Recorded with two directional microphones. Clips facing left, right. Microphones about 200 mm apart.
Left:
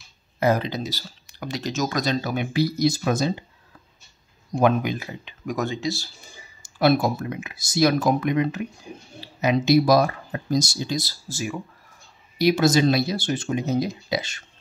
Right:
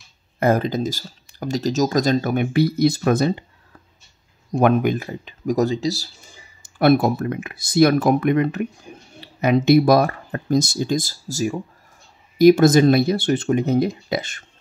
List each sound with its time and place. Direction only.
0.4 s speech: 50° right (ahead or behind)
4.6 s speech: 55° right (ahead or behind)
5.4 s speech: 35° right (ahead or behind)
6.6 s speech: 55° right (ahead or behind)